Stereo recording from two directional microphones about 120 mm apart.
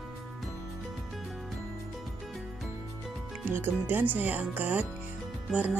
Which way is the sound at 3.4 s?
20° right (ahead or behind).